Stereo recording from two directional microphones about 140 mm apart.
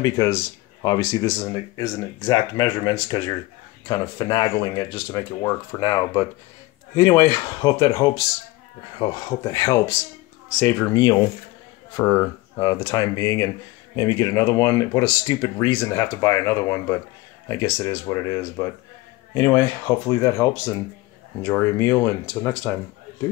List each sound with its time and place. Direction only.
0.0 s speech: 25° left (ahead or behind)
12.0 s speech: 15° left (ahead or behind)
12.5 s speech: 30° left (ahead or behind)
15.7 s speech: 15° left (ahead or behind)
22.2 s speech: 10° left (ahead or behind)